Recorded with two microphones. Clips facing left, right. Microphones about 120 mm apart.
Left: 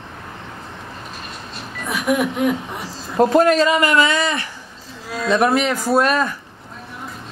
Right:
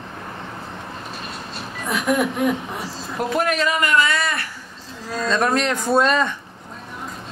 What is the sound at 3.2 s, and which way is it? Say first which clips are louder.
A man's voice: left 8 dB; 30° left (ahead or behind).